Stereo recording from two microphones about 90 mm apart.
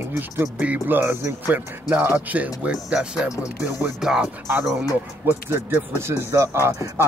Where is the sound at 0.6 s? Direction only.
20° right (ahead or behind).